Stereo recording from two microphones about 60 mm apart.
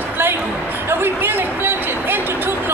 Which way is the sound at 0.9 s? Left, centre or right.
Right.